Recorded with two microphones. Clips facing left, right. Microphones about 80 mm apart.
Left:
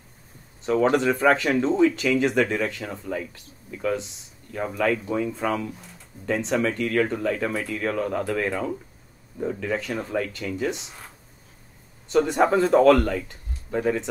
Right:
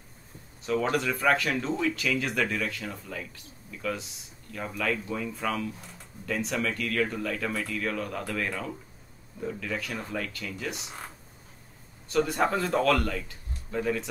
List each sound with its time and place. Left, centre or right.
0.7 s a man's voice: left
12.1 s a man's voice: left